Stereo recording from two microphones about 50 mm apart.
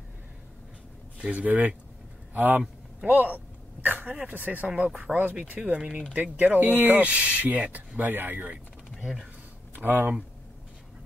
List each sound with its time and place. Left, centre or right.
1.3 s speech: right
3.8 s a sound: right
4.3 s speech: right
9.0 s speech: centre
9.8 s speech: right